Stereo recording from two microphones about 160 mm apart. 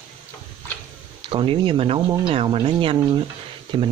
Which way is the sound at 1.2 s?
35° right (ahead or behind).